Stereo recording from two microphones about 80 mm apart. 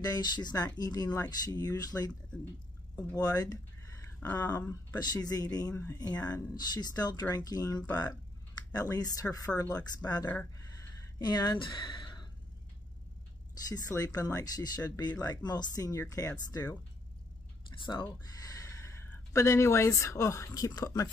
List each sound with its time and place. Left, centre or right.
0.0 s speech: left
3.2 s speech: left
10.2 s a sound: left
11.1 s speech: left
13.6 s speech: left
17.6 s speech: left
18.2 s a sound: left
19.3 s a woman's voice: left